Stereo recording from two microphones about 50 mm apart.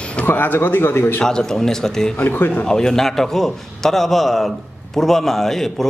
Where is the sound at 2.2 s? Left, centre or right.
Left.